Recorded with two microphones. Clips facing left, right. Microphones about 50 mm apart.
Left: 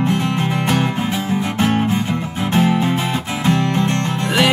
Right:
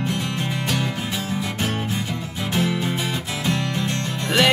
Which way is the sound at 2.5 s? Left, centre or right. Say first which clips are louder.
Left 7 dB; left.